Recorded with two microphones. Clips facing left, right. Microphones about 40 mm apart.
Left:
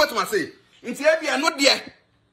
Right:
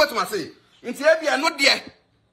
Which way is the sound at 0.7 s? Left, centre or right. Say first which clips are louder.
Even; left.